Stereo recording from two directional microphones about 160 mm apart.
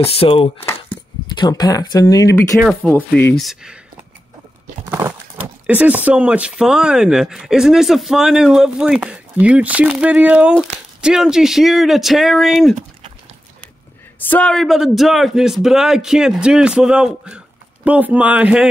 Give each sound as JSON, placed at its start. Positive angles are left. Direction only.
{"t": 0.0, "sound": "speech", "side_deg": 35}
{"t": 2.8, "sound": "speech", "side_deg": 5}
{"t": 5.7, "sound": "speech", "side_deg": -10}
{"t": 14.3, "sound": "speech", "side_deg": 5}